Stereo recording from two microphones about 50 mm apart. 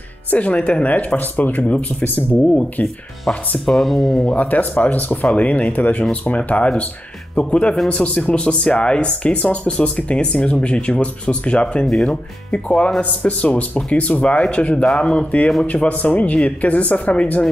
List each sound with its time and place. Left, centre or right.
0.3 s speech: left
3.3 s speech: centre
4.4 s speech: left